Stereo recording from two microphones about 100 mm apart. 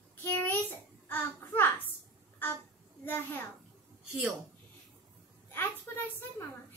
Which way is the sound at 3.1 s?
20° left (ahead or behind).